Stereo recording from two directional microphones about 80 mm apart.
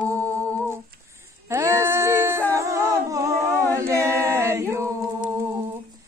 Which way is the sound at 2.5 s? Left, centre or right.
Right.